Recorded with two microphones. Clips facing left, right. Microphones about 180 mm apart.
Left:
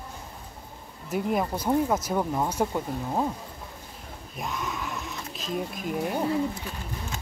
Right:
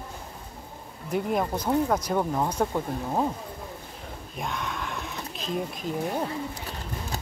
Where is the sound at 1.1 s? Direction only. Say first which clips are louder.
Even; 5° left (ahead or behind).